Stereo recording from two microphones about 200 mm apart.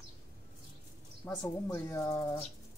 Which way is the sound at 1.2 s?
15° left (ahead or behind).